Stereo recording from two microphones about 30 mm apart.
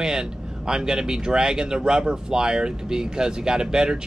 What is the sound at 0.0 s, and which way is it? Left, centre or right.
Speech, centre.